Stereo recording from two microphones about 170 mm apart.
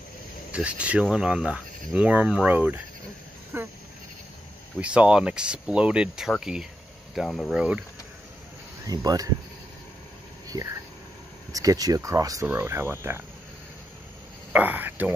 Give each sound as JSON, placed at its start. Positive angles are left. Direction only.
{"t": 0.5, "sound": "speech", "side_deg": -5}
{"t": 3.5, "sound": "goat", "side_deg": -10}
{"t": 4.7, "sound": "speech", "side_deg": -5}
{"t": 8.8, "sound": "speech", "side_deg": -20}
{"t": 10.5, "sound": "speech", "side_deg": -20}
{"t": 14.5, "sound": "speech", "side_deg": -10}